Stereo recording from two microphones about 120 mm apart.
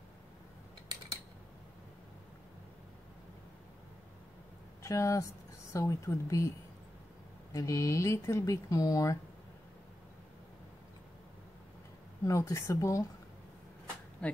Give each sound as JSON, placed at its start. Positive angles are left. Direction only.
{"t": 4.8, "sound": "speech", "side_deg": 25}
{"t": 7.5, "sound": "speech", "side_deg": 25}
{"t": 12.3, "sound": "speech", "side_deg": 25}
{"t": 14.2, "sound": "speech", "side_deg": 10}